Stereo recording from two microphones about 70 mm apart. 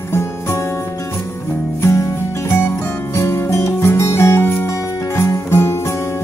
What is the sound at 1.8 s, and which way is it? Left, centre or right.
Music, left.